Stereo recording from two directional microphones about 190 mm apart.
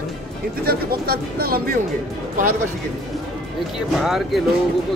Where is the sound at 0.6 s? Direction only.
55° right (ahead or behind).